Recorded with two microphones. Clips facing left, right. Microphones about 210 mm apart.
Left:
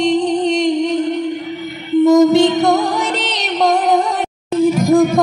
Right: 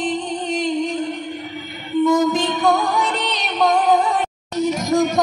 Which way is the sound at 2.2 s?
75° left (ahead or behind).